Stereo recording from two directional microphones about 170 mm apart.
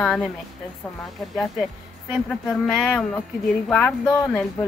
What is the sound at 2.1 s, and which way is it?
Speech, centre (ahead or behind).